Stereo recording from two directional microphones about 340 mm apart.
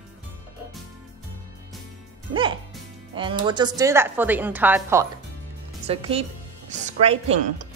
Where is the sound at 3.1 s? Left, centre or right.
Centre.